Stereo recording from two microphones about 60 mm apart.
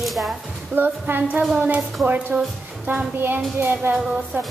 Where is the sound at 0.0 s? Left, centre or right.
Centre.